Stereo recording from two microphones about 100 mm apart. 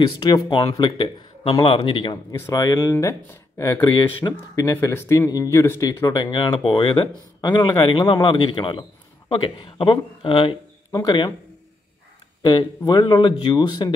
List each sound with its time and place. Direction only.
0.0 s speech: 45° left (ahead or behind)
2.5 s speech: 40° left (ahead or behind)
3.8 s speech: 50° left (ahead or behind)
4.8 s speech: 30° left (ahead or behind)
5.9 s speech: 40° left (ahead or behind); by 10.5 s 60° left (ahead or behind)
10.9 s speech: 45° left (ahead or behind)
12.4 s speech: 45° left (ahead or behind)